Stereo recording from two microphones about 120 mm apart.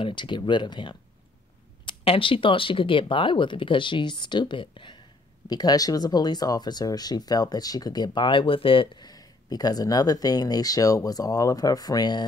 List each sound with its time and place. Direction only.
0.0 s speech: 40° left (ahead or behind)
5.5 s speech: 30° left (ahead or behind)